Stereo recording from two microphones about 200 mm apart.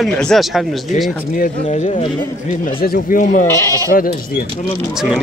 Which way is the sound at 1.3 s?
40° left (ahead or behind).